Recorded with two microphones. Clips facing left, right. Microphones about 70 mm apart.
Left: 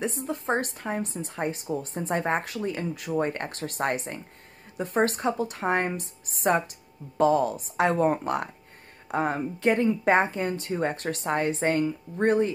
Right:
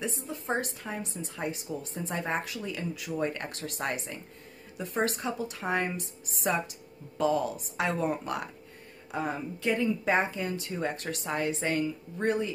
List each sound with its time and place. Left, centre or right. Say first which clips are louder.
0.0 s a woman's voice: left 6 dB; left